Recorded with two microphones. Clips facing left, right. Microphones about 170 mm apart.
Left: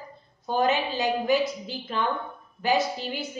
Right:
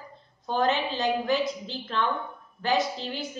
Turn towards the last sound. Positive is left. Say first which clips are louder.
# left 1 dB
turn(degrees=10)  # may be behind; listen again after turning